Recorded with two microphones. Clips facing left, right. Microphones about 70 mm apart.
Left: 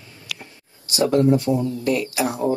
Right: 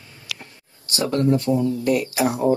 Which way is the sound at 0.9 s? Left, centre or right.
Right.